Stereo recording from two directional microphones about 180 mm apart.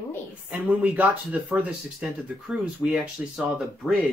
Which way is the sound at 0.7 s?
10° right (ahead or behind).